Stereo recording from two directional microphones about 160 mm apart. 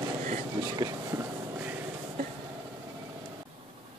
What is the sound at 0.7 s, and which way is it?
Vehicle, 25° right (ahead or behind).